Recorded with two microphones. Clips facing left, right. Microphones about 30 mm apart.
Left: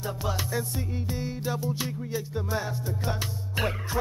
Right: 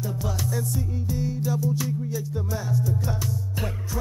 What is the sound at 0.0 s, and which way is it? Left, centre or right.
Music, left.